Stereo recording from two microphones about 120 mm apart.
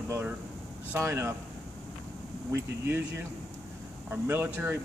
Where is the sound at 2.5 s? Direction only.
20° right (ahead or behind).